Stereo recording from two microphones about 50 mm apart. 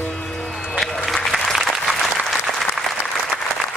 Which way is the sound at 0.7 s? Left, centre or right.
Centre.